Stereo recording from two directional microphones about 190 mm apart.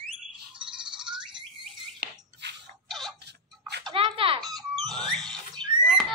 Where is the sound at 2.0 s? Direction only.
55° right (ahead or behind).